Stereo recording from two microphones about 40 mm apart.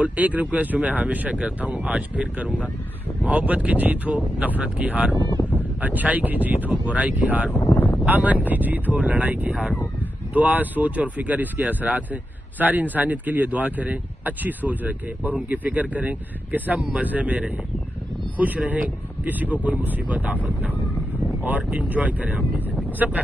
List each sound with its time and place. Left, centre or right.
0.0 s speech: right
6.7 s speech: right
7.7 s a sound: left
8.1 s speech: right
19.2 s speech: right
21.4 s speech: right